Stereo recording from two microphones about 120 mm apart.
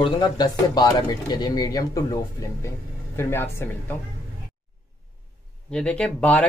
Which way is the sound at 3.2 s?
20° left (ahead or behind).